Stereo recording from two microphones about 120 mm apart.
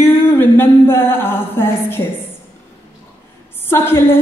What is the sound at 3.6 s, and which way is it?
Speech, 20° left (ahead or behind).